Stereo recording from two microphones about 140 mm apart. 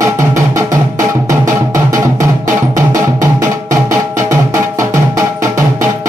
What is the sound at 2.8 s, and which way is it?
Drum, 20° right (ahead or behind).